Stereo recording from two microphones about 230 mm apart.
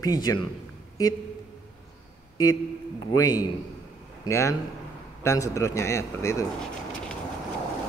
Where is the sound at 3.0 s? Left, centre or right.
Centre.